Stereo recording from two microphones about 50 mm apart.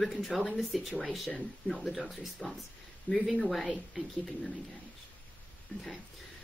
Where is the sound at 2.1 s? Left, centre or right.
Centre.